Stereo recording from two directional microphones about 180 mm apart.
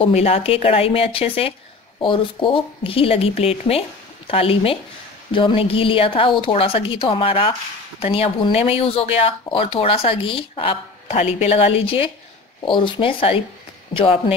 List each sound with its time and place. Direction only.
0.0 s speech: 35° left (ahead or behind)